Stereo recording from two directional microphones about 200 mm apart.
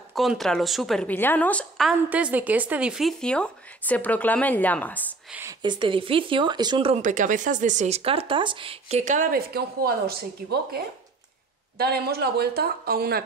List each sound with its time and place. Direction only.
0.1 s a woman's voice: centre (ahead or behind)
5.3 s speech: 15° right (ahead or behind)
7.0 s speech: 40° right (ahead or behind)
11.8 s speech: 50° right (ahead or behind)